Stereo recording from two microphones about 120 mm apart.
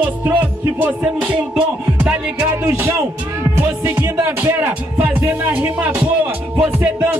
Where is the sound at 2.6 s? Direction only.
20° right (ahead or behind).